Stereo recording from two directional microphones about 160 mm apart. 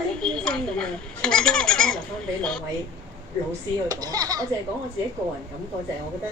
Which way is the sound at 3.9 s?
25° right (ahead or behind).